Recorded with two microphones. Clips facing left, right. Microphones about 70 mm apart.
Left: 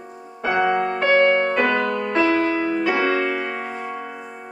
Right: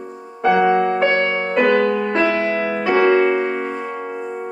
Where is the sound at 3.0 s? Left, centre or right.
Centre.